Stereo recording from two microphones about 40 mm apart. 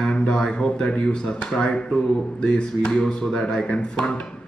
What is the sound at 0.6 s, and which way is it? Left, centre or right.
Speech, left.